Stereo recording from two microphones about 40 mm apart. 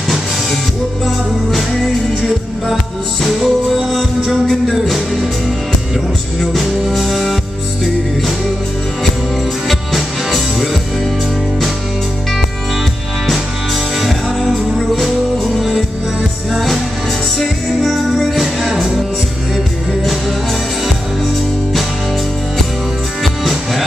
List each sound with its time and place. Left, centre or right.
1.0 s music: centre
3.9 s music: centre
6.5 s music: centre
9.7 s music: centre
14.5 s music: centre
18.6 s music: centre
23.2 s music: centre